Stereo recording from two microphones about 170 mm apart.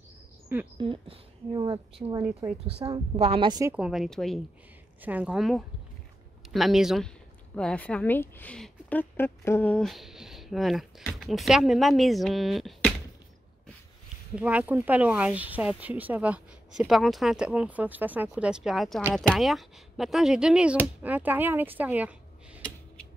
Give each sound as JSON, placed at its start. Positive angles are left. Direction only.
{"t": 0.7, "sound": "a woman's voice", "side_deg": -30}
{"t": 3.7, "sound": "speech", "side_deg": -5}
{"t": 14.3, "sound": "speech", "side_deg": -10}